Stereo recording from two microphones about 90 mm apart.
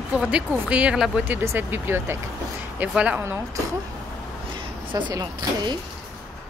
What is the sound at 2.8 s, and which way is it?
Speech, 15° right (ahead or behind).